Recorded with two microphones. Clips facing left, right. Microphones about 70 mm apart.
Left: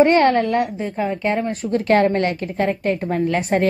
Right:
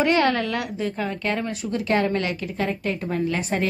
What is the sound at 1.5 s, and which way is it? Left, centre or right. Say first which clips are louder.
A woman's voice: left 6 dB; left.